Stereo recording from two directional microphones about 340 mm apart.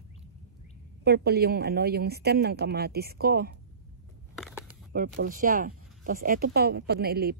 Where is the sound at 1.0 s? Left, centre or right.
Right.